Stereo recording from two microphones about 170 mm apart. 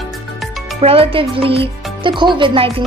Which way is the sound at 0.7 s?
35° right (ahead or behind).